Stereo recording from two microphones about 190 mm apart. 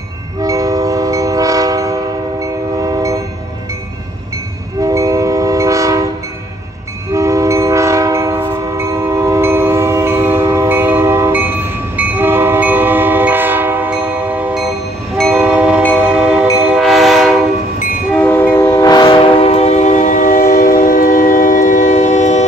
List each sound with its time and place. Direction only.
0.4 s train: 20° right (ahead or behind)
4.8 s train: 15° right (ahead or behind)
7.1 s train: 15° right (ahead or behind); by 17.3 s centre (ahead or behind)
18.1 s train: 10° left (ahead or behind)
19.4 s train: 35° left (ahead or behind)